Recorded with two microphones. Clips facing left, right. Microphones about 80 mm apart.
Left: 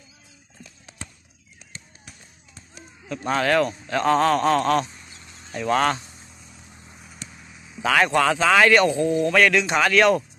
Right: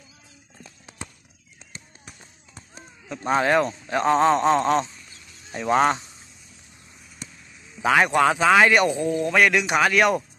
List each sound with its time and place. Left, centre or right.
2.0 s a sound: right
3.3 s a man's voice: centre
7.8 s speech: centre